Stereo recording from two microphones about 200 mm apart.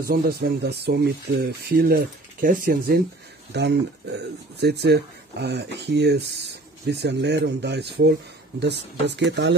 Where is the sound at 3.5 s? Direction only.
60° right (ahead or behind).